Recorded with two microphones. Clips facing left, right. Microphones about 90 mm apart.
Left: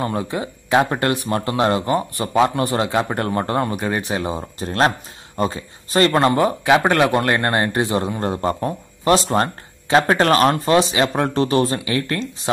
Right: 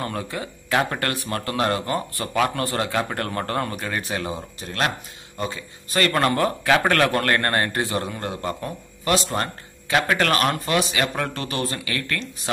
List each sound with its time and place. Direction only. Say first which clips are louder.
0.0 s a man's voice: left 6 dB; 25° left (ahead or behind)
4.4 s a man's voice: left 7 dB; 35° left (ahead or behind)
8.3 s speech: left 7 dB; 35° left (ahead or behind)